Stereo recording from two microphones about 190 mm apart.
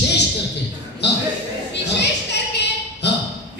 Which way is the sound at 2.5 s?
65° left (ahead or behind).